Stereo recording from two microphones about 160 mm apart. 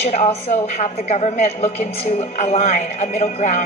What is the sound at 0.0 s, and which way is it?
A woman's voice, 40° left (ahead or behind).